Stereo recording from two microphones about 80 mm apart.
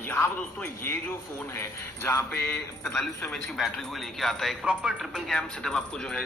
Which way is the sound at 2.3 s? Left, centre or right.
Left.